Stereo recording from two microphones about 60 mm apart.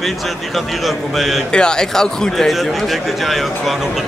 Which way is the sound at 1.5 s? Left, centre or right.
Centre.